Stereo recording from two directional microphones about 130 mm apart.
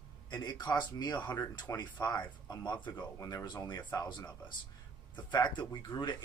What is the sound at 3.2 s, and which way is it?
Speech, 30° left (ahead or behind).